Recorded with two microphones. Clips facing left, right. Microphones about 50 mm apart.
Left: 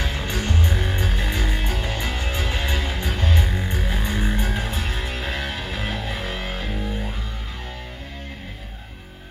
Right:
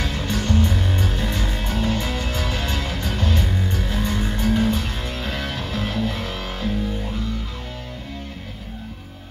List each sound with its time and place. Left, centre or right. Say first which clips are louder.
0.0 s music: right 2 dB; left